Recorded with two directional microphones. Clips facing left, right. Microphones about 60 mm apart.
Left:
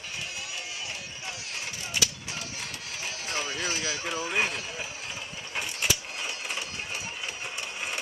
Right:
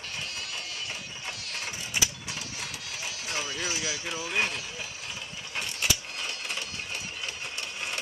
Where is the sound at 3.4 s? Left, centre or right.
Left.